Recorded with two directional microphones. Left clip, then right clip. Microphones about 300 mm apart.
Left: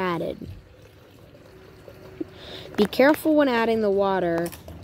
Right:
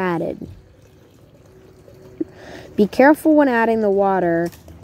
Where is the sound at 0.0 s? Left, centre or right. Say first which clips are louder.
Right 5 dB; centre.